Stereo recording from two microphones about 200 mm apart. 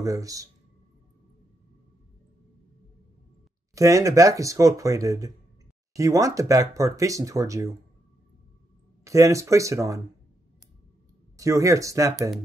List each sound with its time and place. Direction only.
0.0 s speech: 15° right (ahead or behind)
3.7 s speech: 15° right (ahead or behind)
9.0 s speech: 15° right (ahead or behind)
11.3 s speech: 15° right (ahead or behind)